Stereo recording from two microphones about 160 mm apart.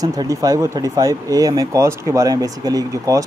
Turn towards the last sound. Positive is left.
turn(degrees=-20)  # may be behind; listen again after turning